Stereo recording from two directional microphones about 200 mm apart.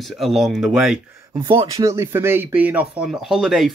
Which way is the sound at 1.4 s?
25° right (ahead or behind).